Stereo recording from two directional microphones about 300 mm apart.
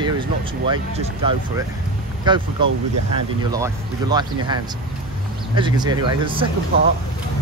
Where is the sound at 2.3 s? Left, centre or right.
Centre.